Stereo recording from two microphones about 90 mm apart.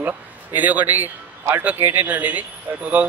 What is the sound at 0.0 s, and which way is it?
A man's voice, 20° right (ahead or behind).